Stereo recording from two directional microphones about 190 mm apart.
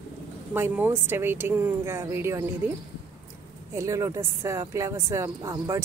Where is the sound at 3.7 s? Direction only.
15° right (ahead or behind).